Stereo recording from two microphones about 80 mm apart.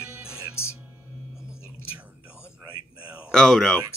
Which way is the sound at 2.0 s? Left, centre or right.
Centre.